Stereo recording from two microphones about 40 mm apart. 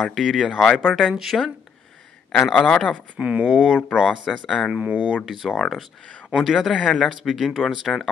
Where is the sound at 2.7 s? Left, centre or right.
Centre.